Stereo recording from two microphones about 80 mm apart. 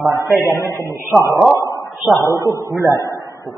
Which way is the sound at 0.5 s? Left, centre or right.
Left.